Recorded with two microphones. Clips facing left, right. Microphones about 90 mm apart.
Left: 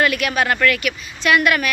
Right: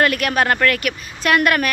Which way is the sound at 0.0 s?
45° right (ahead or behind).